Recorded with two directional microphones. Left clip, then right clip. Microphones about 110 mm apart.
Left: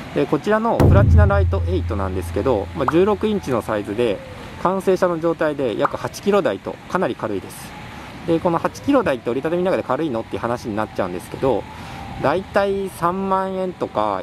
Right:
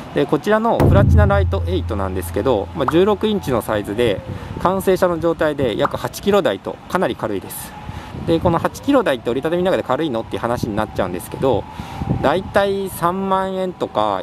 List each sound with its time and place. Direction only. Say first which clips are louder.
0.1 s speech: right 2 dB; 15° right (ahead or behind)